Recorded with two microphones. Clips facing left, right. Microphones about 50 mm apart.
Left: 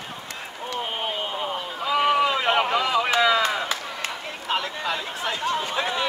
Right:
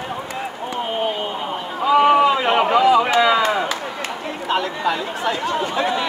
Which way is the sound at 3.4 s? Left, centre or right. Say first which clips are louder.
Right 5 dB; right.